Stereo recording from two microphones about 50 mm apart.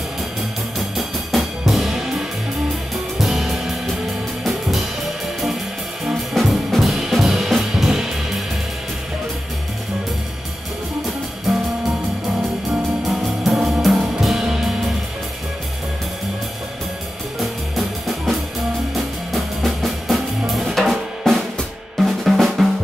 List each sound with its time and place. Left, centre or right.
0.7 s music: centre
6.3 s music: centre
13.0 s music: centre
17.4 s music: centre
21.9 s drum: centre